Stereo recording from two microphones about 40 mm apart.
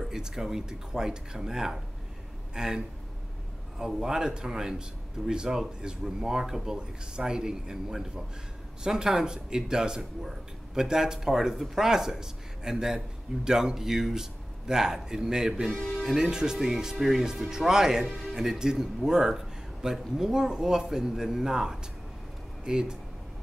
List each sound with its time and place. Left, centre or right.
0.1 s speech: centre